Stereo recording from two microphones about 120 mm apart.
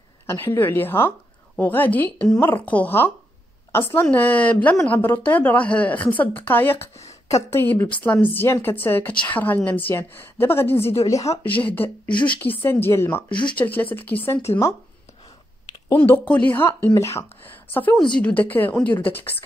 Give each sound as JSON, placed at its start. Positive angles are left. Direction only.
{"t": 0.3, "sound": "a woman's voice", "side_deg": 20}
{"t": 11.6, "sound": "a woman's voice", "side_deg": 15}
{"t": 13.3, "sound": "speech", "side_deg": 40}
{"t": 13.6, "sound": "a woman's voice", "side_deg": 15}
{"t": 16.0, "sound": "a woman's voice", "side_deg": 15}